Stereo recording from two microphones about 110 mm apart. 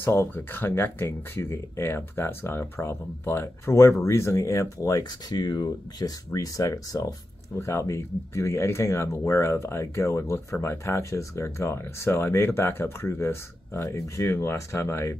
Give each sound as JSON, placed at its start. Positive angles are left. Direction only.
{"t": 0.0, "sound": "speech", "side_deg": 20}